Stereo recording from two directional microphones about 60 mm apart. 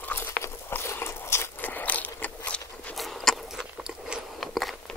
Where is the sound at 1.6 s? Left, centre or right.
Left.